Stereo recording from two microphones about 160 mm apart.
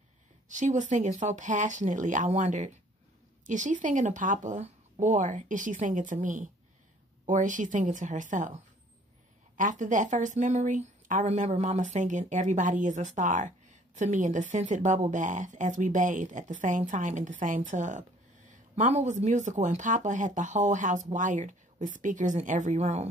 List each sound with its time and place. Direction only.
0.5 s a woman's voice: 50° right (ahead or behind)
9.6 s a woman's voice: 50° right (ahead or behind)